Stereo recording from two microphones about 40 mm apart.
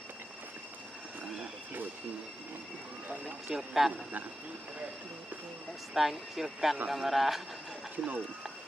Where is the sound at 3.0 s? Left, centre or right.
Right.